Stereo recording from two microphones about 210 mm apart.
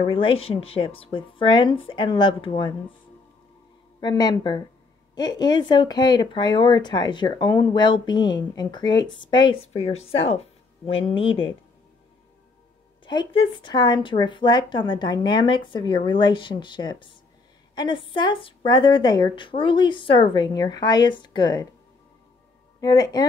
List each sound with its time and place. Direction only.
0.0 s speech: 25° left (ahead or behind)
4.0 s speech: 20° left (ahead or behind)
13.0 s speech: 20° left (ahead or behind)
22.8 s speech: 20° left (ahead or behind)